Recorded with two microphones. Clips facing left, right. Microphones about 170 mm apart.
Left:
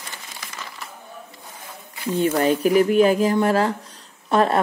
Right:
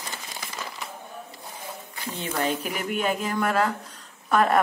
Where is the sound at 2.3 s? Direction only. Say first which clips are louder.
Left 9 dB; 40° left (ahead or behind).